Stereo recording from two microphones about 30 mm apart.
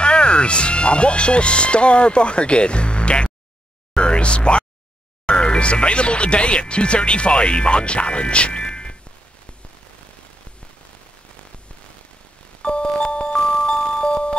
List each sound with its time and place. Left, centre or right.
0.0 s speech: left
3.9 s a sound: left
5.2 s speech: left
12.6 s music: left